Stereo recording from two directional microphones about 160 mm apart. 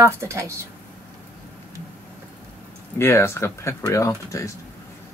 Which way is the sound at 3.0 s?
15° left (ahead or behind).